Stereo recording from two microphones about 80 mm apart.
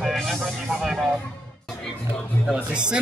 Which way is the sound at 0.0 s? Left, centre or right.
Centre.